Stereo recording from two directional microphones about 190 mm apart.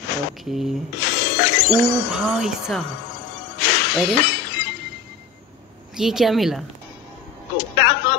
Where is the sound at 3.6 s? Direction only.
60° left (ahead or behind).